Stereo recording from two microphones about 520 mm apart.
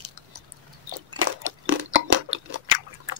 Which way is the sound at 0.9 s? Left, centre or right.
Right.